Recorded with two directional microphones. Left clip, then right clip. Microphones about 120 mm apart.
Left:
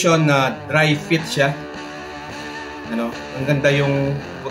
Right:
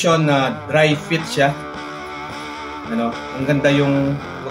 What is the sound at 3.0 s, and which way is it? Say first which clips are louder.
A man's voice: right 3 dB; 25° left (ahead or behind).